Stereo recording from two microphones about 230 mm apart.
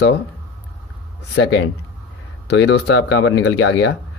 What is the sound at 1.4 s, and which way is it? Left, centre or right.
Speech, left.